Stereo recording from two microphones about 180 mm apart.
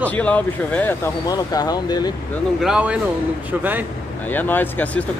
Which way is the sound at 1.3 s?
20° left (ahead or behind).